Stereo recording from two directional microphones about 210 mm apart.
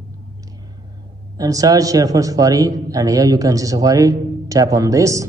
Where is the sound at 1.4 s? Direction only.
15° right (ahead or behind).